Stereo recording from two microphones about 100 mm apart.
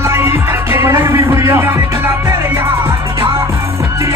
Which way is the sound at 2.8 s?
65° right (ahead or behind).